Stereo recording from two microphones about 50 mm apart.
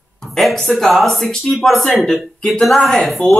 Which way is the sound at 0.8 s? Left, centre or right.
Centre.